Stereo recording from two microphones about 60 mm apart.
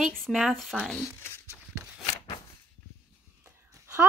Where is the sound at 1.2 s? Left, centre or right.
Left.